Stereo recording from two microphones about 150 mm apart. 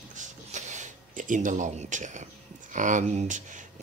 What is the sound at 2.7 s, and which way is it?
Speech, 55° right (ahead or behind).